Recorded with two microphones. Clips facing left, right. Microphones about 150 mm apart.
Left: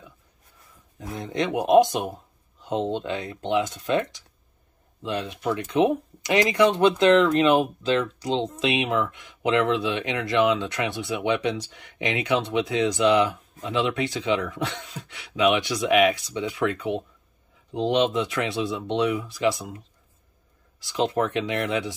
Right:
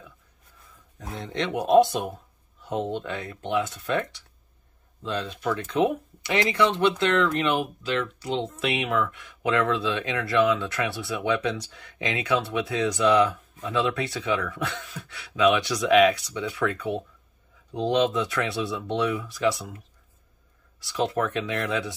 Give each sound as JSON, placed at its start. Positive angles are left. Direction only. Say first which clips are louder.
{"t": 1.2, "sound": "speech", "louder": "left 3 dB", "side_deg": 15}
{"t": 17.7, "sound": "speech", "louder": "left 1 dB", "side_deg": 20}
{"t": 20.9, "sound": "speech", "louder": "left 2 dB", "side_deg": 20}